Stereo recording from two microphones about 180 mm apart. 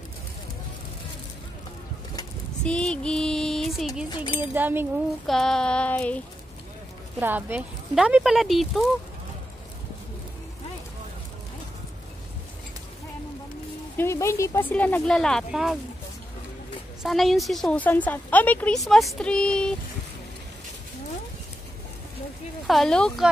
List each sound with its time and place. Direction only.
2.6 s child singing: 5° left (ahead or behind)
4.1 s speech: 25° left (ahead or behind)
4.4 s speech: 10° right (ahead or behind)
5.2 s a woman's voice: centre (ahead or behind)
7.2 s a woman's voice: 10° right (ahead or behind)
13.9 s a woman's voice: 15° left (ahead or behind); by 15.8 s centre (ahead or behind)
17.0 s a woman's voice: centre (ahead or behind)
22.7 s a woman's voice: centre (ahead or behind)